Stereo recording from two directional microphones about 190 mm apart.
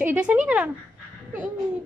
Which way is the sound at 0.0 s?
10° right (ahead or behind).